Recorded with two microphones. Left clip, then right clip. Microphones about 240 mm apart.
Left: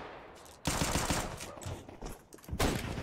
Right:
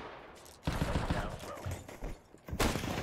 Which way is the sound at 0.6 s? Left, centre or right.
Left.